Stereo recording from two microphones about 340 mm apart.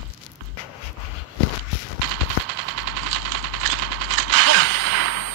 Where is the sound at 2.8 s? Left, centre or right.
Right.